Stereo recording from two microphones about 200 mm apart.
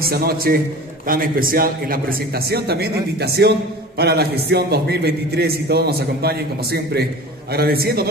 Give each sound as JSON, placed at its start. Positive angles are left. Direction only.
{"t": 0.0, "sound": "a man's voice", "side_deg": -50}